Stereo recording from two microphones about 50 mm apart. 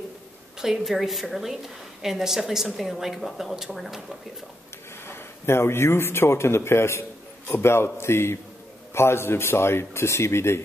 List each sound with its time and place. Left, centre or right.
0.6 s a woman's voice: centre
5.0 s a man's voice: left